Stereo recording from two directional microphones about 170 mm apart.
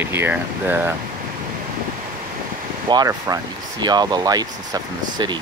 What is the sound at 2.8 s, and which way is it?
Speech, 25° right (ahead or behind).